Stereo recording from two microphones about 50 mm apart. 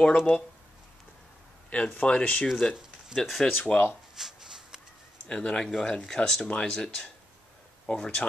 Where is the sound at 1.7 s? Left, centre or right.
Left.